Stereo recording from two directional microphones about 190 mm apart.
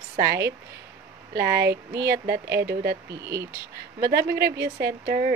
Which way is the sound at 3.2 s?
15° right (ahead or behind).